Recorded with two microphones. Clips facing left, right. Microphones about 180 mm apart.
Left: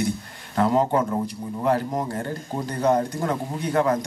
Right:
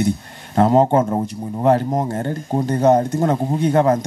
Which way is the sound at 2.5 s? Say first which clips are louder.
Right 10 dB; 55° right (ahead or behind).